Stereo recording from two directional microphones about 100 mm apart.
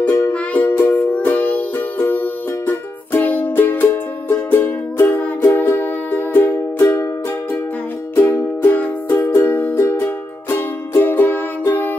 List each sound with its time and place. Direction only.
0.2 s music: 10° left (ahead or behind)
8.2 s music: 20° left (ahead or behind)